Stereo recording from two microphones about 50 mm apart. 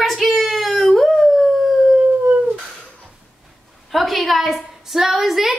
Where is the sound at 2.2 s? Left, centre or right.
Right.